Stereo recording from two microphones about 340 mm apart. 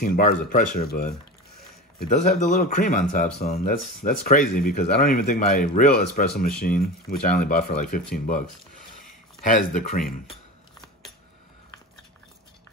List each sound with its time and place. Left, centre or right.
0.0 s speech: left
9.5 s speech: left